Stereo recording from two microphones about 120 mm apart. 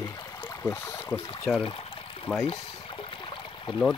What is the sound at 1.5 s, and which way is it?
Speech, 5° right (ahead or behind).